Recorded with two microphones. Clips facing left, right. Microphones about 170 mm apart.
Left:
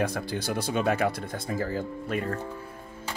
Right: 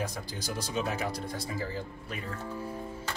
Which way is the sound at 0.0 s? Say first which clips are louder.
Left 7 dB; 60° left (ahead or behind).